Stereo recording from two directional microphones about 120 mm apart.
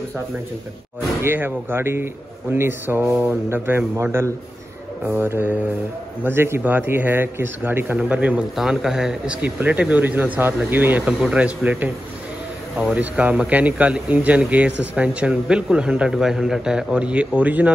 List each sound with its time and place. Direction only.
1.2 s a man's voice: 15° right (ahead or behind)